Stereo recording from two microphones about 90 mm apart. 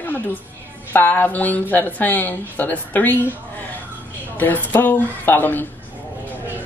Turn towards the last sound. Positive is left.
turn(degrees=20)  # may be behind; listen again after turning